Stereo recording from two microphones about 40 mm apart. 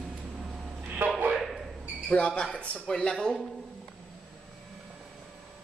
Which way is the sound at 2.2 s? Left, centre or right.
Left.